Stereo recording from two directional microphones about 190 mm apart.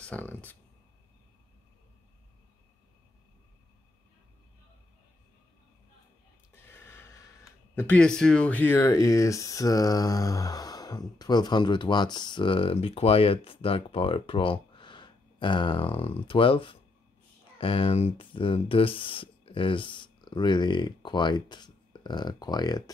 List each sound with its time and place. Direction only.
0.0 s speech: 10° left (ahead or behind)
6.5 s a sound: 10° left (ahead or behind)
7.7 s speech: 10° left (ahead or behind)